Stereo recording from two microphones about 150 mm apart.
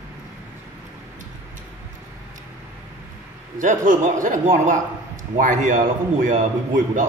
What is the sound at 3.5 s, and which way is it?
A man's voice, 60° right (ahead or behind).